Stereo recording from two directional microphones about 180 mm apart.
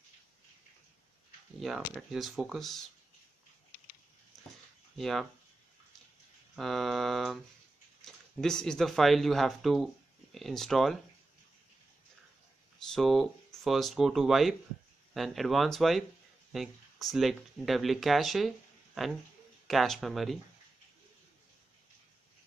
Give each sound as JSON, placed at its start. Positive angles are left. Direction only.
{"t": 2.0, "sound": "speech", "side_deg": 0}
{"t": 4.9, "sound": "speech", "side_deg": 0}
{"t": 6.5, "sound": "speech", "side_deg": 0}
{"t": 12.9, "sound": "speech", "side_deg": 0}
{"t": 19.7, "sound": "speech", "side_deg": 0}